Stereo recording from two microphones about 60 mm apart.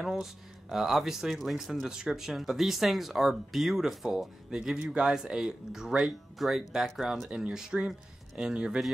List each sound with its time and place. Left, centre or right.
0.0 s speech: centre
7.2 s speech: centre